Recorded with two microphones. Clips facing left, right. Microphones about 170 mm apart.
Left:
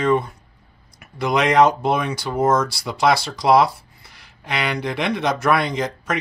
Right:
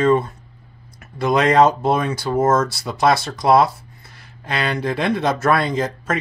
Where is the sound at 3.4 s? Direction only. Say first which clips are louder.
Even; 25° right (ahead or behind).